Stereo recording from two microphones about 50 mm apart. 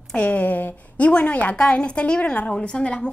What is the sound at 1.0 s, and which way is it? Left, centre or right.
A woman's voice, left.